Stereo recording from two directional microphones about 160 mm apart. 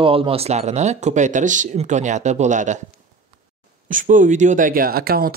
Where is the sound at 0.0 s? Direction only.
35° right (ahead or behind); by 2.8 s 50° right (ahead or behind).